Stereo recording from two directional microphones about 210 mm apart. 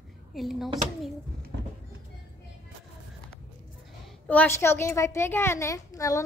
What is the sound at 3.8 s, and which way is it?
A woman's voice, 5° left (ahead or behind).